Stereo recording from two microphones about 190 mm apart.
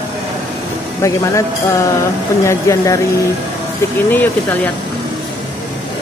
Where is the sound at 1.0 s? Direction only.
15° left (ahead or behind).